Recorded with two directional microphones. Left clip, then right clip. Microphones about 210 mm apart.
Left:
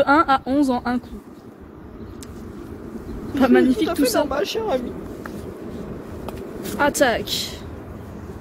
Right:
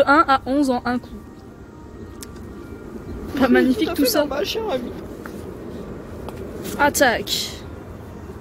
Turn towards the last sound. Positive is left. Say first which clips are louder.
# right 1 dB
turn(degrees=-10)  # may be behind; listen again after turning